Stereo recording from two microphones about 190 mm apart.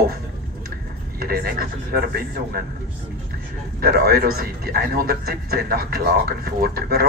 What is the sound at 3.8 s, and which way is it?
A man's voice, 55° right (ahead or behind).